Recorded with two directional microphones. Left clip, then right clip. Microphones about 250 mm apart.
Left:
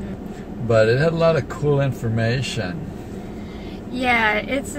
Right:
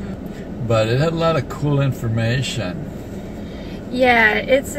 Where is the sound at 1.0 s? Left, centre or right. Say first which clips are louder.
Left 1 dB; centre.